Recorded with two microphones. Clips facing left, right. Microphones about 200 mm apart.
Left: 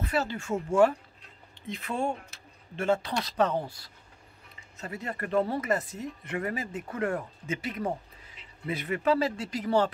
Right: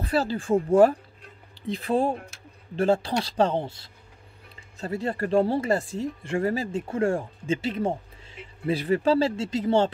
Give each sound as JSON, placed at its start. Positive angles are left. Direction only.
{"t": 0.0, "sound": "speech", "side_deg": -35}